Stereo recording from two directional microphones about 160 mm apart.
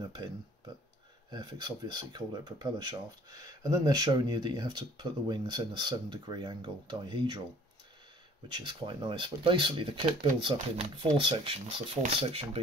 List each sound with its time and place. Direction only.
0.0 s speech: 25° right (ahead or behind)
1.3 s speech: 25° right (ahead or behind)
8.5 s speech: 30° right (ahead or behind)